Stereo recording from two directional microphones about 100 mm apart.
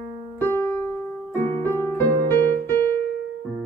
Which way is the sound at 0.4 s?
25° left (ahead or behind).